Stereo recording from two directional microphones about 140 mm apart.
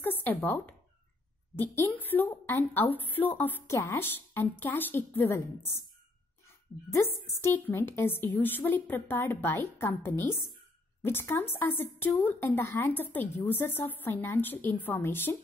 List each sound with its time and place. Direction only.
0.0 s a woman's voice: 15° left (ahead or behind)
6.9 s a woman's voice: 15° left (ahead or behind)